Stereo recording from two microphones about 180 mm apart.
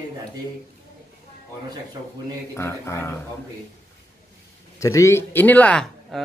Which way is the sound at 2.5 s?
15° left (ahead or behind).